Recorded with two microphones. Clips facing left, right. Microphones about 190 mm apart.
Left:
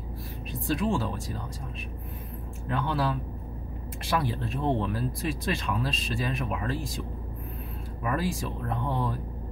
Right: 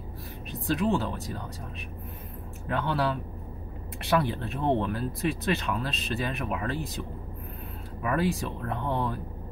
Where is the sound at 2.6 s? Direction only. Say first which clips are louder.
Right 1 dB; 65° right (ahead or behind).